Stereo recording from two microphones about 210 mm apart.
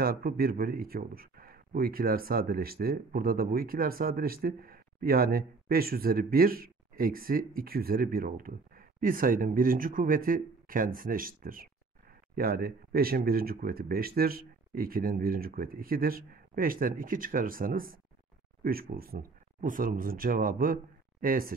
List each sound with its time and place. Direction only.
0.0 s speech: 45° right (ahead or behind)